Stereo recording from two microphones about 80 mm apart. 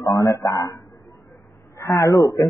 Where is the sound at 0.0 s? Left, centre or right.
Left.